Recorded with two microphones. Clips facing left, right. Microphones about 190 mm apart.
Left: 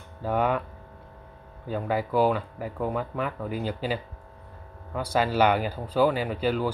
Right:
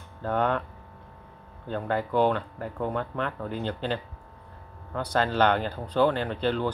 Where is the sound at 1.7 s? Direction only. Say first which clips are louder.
Left 1 dB; 5° left (ahead or behind).